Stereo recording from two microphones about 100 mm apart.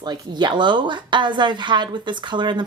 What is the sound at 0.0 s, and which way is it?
Speech, 50° right (ahead or behind).